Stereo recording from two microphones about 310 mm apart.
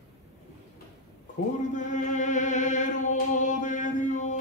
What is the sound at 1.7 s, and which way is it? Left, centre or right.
Chant, left.